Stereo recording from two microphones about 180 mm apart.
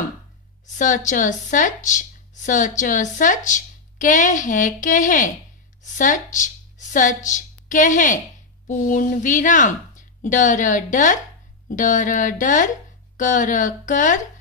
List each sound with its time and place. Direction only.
0.7 s a woman's voice: 45° left (ahead or behind)